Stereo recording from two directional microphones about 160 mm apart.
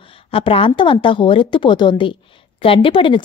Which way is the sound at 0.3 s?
35° left (ahead or behind).